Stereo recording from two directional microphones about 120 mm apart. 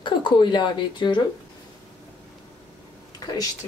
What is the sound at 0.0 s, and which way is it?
Speech, 40° left (ahead or behind).